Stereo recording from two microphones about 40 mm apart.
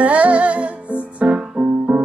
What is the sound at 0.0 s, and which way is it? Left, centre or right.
Music, right.